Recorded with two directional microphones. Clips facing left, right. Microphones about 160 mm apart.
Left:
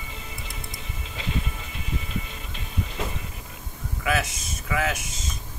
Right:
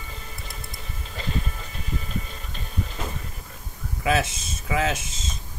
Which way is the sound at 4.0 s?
25° right (ahead or behind).